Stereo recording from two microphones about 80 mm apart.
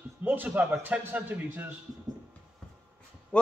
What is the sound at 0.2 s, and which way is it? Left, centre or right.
A man's voice, right.